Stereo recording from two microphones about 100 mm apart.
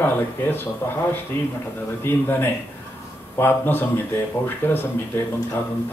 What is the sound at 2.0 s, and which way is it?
A man's voice, 20° left (ahead or behind).